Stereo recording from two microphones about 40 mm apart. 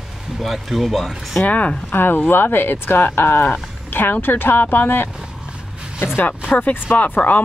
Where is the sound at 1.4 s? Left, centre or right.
Left.